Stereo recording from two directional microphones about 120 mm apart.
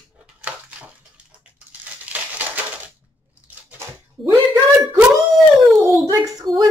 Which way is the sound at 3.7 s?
20° right (ahead or behind).